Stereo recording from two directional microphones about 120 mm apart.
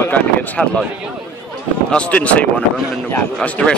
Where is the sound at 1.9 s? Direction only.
10° left (ahead or behind).